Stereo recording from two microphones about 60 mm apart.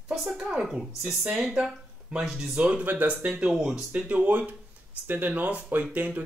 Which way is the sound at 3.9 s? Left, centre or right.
Right.